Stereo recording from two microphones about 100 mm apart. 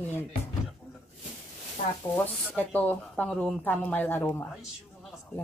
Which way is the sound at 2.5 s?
15° left (ahead or behind).